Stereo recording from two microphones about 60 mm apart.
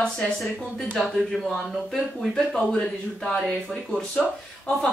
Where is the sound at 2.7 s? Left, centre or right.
Centre.